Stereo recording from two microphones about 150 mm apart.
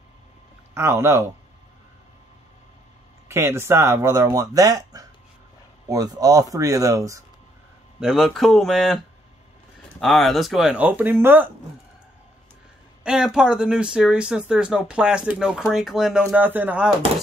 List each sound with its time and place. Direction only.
0.7 s speech: 15° right (ahead or behind)
3.3 s speech: 15° right (ahead or behind)
8.0 s speech: centre (ahead or behind)
13.0 s speech: 5° right (ahead or behind)